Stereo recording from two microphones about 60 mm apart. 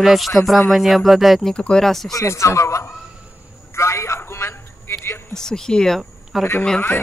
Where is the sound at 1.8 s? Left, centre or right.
Centre.